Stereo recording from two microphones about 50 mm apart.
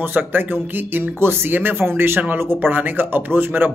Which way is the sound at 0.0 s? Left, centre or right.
Right.